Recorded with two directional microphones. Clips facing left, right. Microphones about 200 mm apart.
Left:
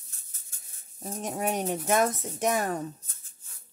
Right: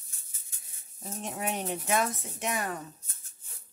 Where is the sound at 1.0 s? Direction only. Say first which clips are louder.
Left 4 dB; 45° left (ahead or behind).